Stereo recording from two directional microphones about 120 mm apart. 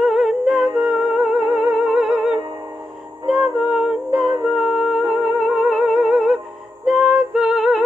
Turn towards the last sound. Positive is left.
turn(degrees=-5)  # may be behind; listen again after turning